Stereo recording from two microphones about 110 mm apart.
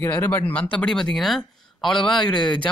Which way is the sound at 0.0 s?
20° left (ahead or behind).